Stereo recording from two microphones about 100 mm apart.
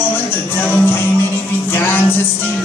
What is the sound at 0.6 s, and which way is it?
Music, 20° left (ahead or behind).